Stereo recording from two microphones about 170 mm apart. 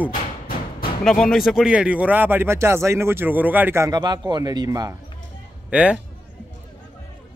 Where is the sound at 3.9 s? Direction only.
25° right (ahead or behind).